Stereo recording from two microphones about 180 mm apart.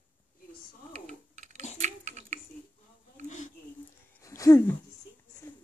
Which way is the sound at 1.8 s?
40° right (ahead or behind).